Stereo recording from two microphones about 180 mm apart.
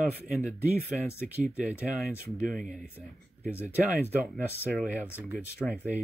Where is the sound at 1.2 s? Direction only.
5° right (ahead or behind).